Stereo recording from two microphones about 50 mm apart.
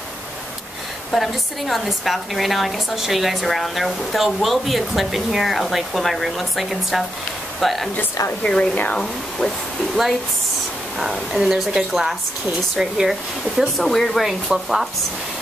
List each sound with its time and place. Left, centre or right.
1.1 s a woman's voice: centre
8.4 s speech: left
8.9 s speech: centre
11.0 s speech: centre
13.6 s a woman's voice: centre